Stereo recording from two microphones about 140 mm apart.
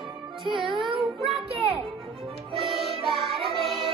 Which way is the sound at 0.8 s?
40° right (ahead or behind).